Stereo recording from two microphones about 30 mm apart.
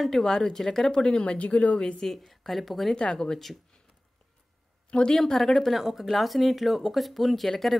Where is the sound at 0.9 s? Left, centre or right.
Left.